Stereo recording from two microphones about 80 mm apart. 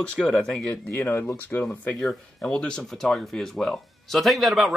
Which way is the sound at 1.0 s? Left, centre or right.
Left.